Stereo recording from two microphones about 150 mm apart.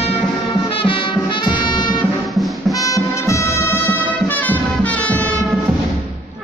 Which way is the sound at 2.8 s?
20° left (ahead or behind).